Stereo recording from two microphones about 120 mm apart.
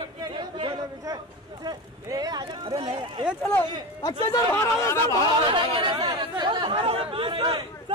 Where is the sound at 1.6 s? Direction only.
35° right (ahead or behind).